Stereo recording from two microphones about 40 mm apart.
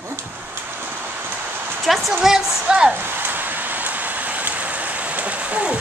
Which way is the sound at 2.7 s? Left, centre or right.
Right.